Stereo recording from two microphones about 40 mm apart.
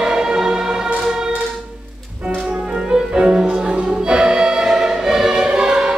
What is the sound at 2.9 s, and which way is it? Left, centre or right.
Music, centre.